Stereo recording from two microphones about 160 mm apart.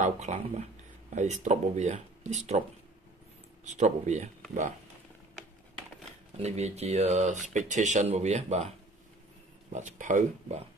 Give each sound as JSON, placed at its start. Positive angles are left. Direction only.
{"t": 0.0, "sound": "speech", "side_deg": -45}
{"t": 3.6, "sound": "speech", "side_deg": -45}
{"t": 6.3, "sound": "speech", "side_deg": -45}